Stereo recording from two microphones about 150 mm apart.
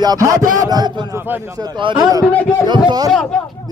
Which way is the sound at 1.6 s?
30° right (ahead or behind).